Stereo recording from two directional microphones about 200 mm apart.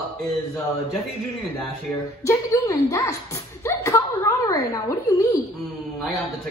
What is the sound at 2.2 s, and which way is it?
A woman's voice, 15° left (ahead or behind).